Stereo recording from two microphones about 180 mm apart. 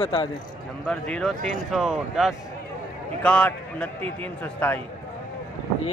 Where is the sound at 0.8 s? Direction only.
5° left (ahead or behind).